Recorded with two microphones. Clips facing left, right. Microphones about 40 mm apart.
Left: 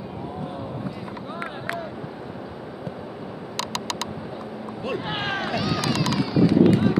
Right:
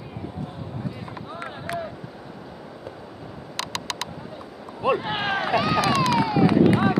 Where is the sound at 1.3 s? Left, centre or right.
Centre.